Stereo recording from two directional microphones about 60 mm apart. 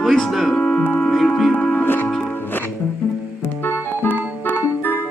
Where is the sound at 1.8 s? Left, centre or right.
Left.